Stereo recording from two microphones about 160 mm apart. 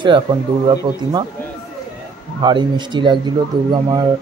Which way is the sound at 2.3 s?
30° right (ahead or behind).